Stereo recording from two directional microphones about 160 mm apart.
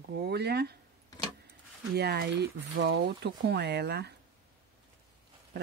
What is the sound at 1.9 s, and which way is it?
Speech, 90° right.